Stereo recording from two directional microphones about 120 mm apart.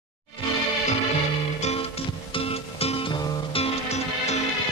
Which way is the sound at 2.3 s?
50° left (ahead or behind).